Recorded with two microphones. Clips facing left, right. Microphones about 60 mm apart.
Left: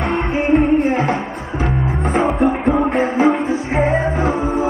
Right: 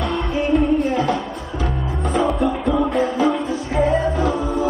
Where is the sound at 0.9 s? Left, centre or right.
Left.